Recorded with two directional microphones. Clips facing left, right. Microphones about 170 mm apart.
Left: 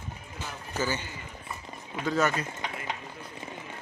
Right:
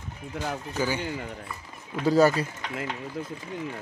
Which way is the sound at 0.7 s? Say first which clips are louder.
Right 2 dB; 10° right (ahead or behind).